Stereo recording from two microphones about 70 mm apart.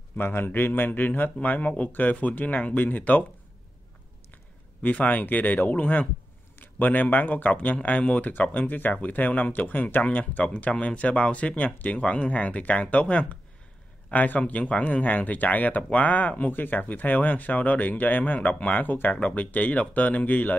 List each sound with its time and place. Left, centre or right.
0.2 s a man's voice: left
4.8 s a man's voice: left